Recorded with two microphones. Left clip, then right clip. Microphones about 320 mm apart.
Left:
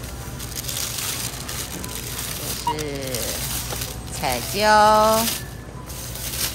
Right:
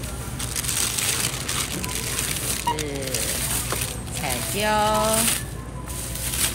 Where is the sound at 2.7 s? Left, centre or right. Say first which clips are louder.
Left 1 dB; centre.